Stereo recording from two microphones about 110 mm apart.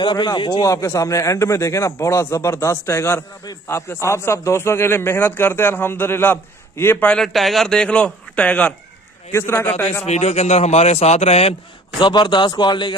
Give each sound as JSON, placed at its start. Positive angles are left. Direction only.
{"t": 0.0, "sound": "a man's voice", "side_deg": 40}
{"t": 7.3, "sound": "a man's voice", "side_deg": 0}
{"t": 10.0, "sound": "speech", "side_deg": 85}
{"t": 12.0, "sound": "speech", "side_deg": 40}